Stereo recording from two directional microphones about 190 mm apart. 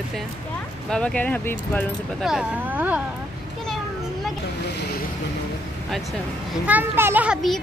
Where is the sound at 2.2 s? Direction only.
5° right (ahead or behind).